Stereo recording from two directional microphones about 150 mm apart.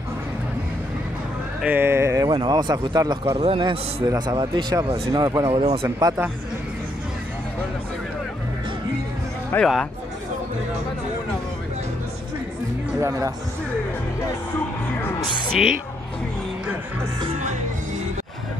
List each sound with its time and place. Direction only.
1.6 s a man's voice: 10° right (ahead or behind)
3.3 s a man's voice: 35° right (ahead or behind)
5.5 s a man's voice: 40° right (ahead or behind)
5.9 s speech: 20° right (ahead or behind)
9.6 s speech: 5° left (ahead or behind)
13.0 s speech: 20° right (ahead or behind)
17.4 s music: 50° right (ahead or behind)